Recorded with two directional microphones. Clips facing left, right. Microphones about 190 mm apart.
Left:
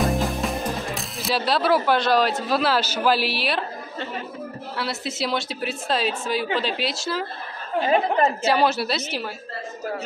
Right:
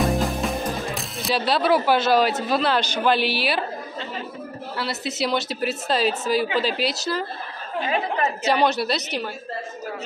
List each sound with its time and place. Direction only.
0.0 s music: centre (ahead or behind)
2.4 s a woman's voice: centre (ahead or behind)
4.7 s a woman's voice: centre (ahead or behind)
7.8 s a woman's voice: 35° left (ahead or behind)
8.5 s a woman's voice: centre (ahead or behind)